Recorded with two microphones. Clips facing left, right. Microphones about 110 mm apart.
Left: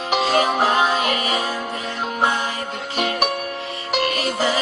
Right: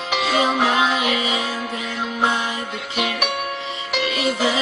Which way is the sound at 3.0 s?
40° left (ahead or behind).